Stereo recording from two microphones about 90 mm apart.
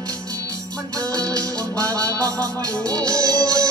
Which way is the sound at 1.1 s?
40° right (ahead or behind).